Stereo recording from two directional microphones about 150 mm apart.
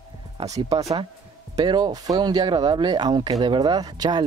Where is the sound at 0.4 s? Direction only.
20° right (ahead or behind).